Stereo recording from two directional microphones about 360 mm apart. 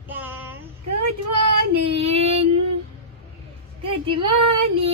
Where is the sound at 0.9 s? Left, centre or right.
Right.